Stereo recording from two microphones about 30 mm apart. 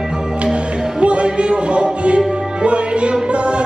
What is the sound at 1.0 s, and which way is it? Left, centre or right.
Music, right.